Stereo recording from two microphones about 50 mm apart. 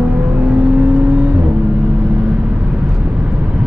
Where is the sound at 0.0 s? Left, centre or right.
Centre.